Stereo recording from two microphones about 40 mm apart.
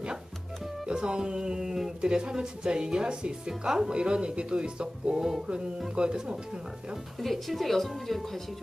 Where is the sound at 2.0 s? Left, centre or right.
Right.